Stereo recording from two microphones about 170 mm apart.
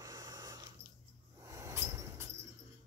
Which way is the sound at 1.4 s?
20° right (ahead or behind).